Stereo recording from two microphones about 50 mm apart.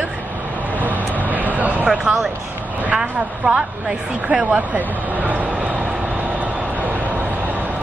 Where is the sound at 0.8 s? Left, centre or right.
Right.